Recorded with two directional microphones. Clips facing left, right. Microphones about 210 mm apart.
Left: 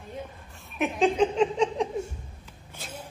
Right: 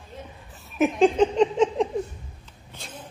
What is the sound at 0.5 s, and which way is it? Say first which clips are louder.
Speech: right 6 dB; centre (ahead or behind).